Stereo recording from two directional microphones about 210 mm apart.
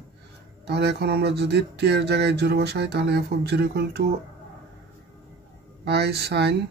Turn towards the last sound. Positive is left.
turn(degrees=-50)  # may be behind; listen again after turning